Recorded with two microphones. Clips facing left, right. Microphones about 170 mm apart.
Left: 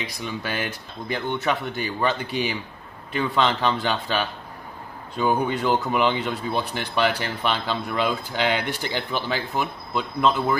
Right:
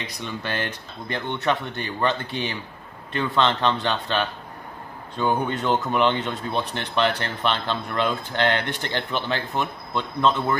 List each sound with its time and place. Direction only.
0.2 s speech: 5° left (ahead or behind)